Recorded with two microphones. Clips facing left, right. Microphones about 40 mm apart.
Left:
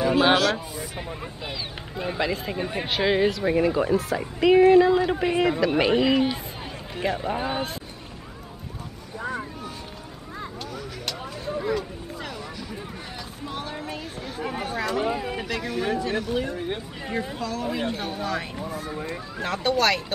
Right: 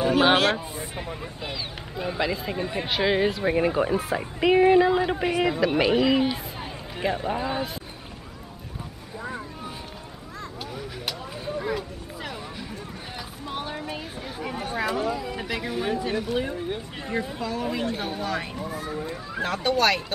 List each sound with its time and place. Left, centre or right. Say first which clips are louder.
0.0 s speech: even; right
0.9 s speech: even; centre
3.3 s speech: left 1 dB; centre
7.3 s speech: even; centre
10.7 s a sound: even; centre
13.5 s chatter: right 1 dB; centre
15.0 s a sound: left 2 dB; left
15.4 s speech: right 1 dB; centre
16.5 s speech: left 1 dB; left
17.4 s speech: even; centre